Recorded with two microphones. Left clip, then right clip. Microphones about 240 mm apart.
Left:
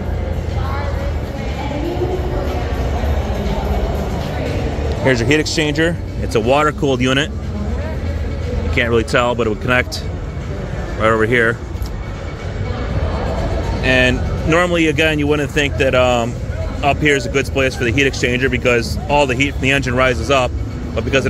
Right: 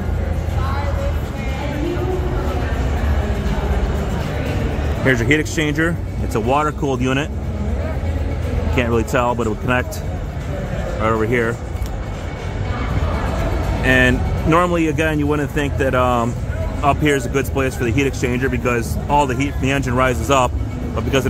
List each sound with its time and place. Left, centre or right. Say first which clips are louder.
5.0 s speech: left 2 dB; centre
8.7 s speech: left 3 dB; centre
11.0 s speech: left 5 dB; centre
13.8 s speech: left 1 dB; centre